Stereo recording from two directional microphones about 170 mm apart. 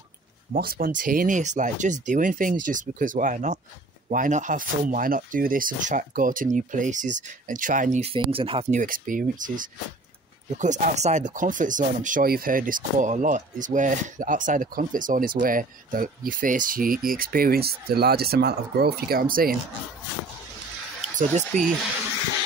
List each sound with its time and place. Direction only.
0.5 s speech: 60° right (ahead or behind)
8.1 s speech: 30° right (ahead or behind)
8.7 s speech: 50° right (ahead or behind)